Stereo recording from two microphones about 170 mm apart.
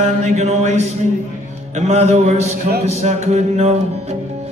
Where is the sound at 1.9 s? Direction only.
40° right (ahead or behind).